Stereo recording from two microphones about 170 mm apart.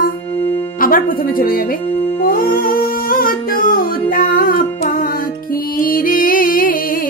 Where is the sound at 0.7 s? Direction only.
55° left (ahead or behind).